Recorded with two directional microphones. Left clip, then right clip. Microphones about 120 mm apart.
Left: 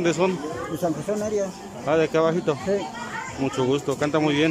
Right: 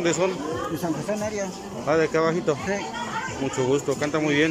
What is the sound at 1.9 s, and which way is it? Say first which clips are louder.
Speech: left 1 dB; 20° left (ahead or behind).